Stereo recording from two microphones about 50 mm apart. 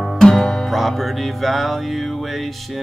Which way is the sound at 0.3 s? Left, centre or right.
Centre.